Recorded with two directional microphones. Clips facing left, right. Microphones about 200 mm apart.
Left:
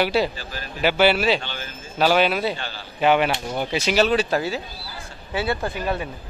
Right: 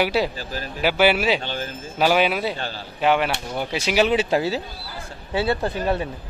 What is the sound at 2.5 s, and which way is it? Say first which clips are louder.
Speech: right 2 dB; 40° right (ahead or behind).